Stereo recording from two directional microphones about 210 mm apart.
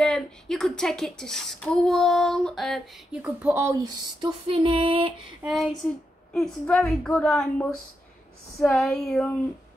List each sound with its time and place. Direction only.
0.0 s speech: centre (ahead or behind); by 5.1 s 25° right (ahead or behind)
5.5 s speech: centre (ahead or behind)